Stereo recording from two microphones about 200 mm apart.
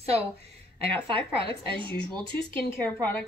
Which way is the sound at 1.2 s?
25° right (ahead or behind).